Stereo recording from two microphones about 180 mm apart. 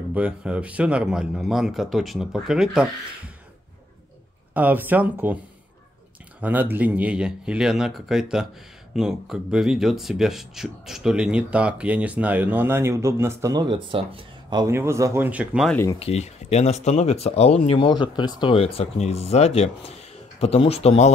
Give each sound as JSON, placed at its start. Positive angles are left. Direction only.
{"t": 0.1, "sound": "speech", "side_deg": -5}
{"t": 4.6, "sound": "speech", "side_deg": -10}
{"t": 6.4, "sound": "speech", "side_deg": -10}
{"t": 15.7, "sound": "speech", "side_deg": 15}
{"t": 16.0, "sound": "speech", "side_deg": 35}